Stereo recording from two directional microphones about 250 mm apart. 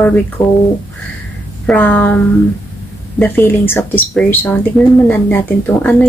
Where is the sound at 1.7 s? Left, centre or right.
Centre.